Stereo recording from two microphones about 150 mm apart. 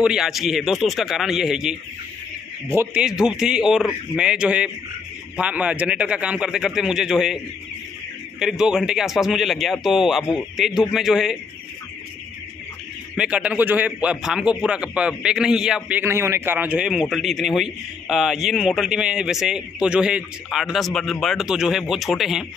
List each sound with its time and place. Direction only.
0.0 s speech: 5° right (ahead or behind)
2.7 s a man's voice: 15° right (ahead or behind)
3.0 s a man's voice: 5° right (ahead or behind)
8.4 s speech: 5° right (ahead or behind)
13.1 s speech: 5° right (ahead or behind)